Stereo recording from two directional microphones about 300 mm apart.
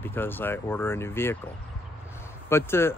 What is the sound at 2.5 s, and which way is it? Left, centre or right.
Speech, centre.